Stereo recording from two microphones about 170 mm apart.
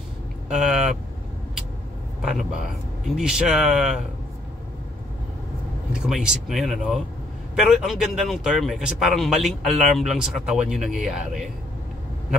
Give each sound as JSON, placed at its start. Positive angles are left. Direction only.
{"t": 0.5, "sound": "speech", "side_deg": 0}
{"t": 2.2, "sound": "speech", "side_deg": 0}
{"t": 5.9, "sound": "speech", "side_deg": -5}